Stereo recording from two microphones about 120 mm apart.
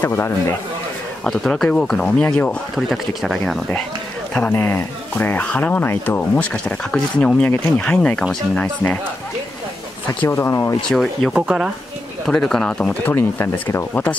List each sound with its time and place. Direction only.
0.0 s speech: 20° left (ahead or behind)
1.2 s speech: 5° left (ahead or behind)
2.7 s speech: centre (ahead or behind)
4.3 s speech: 15° left (ahead or behind)
10.2 s speech: 20° left (ahead or behind)
10.9 s speech: centre (ahead or behind)
11.3 s speech: 10° right (ahead or behind)
12.3 s speech: 5° left (ahead or behind)
13.1 s speech: 20° left (ahead or behind)